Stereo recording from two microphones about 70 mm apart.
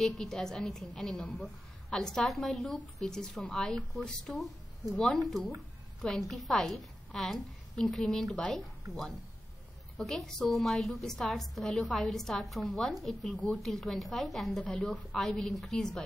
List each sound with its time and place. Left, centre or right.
0.0 s a woman's voice: centre
9.9 s a woman's voice: centre
14.6 s a woman's voice: centre
14.9 s a woman's voice: centre